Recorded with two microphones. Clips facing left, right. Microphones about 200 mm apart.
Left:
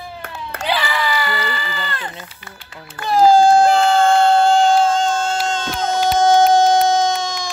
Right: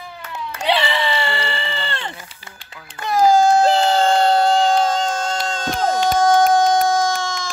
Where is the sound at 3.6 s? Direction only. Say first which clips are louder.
Left 2 dB; 30° right (ahead or behind).